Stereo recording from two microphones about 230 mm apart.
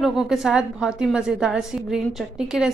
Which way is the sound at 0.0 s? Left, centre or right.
Centre.